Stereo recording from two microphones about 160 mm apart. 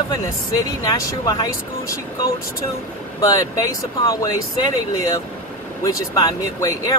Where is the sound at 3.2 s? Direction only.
20° left (ahead or behind).